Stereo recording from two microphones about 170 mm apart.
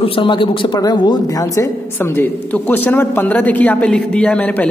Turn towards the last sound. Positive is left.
turn(degrees=10)  # may be behind; listen again after turning